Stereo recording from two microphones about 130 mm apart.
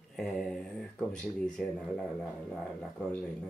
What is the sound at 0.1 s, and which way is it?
Mantra, 5° left (ahead or behind).